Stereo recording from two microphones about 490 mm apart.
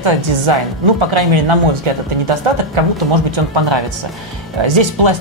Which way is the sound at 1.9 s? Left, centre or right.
Right.